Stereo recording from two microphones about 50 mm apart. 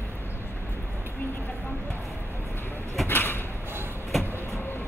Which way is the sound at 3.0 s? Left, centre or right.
Left.